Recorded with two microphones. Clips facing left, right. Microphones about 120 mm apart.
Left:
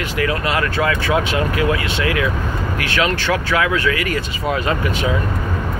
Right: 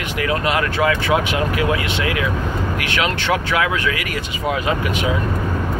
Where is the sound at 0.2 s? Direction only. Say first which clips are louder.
Even; 15° right (ahead or behind).